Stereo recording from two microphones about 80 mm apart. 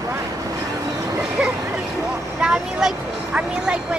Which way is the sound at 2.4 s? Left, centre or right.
Centre.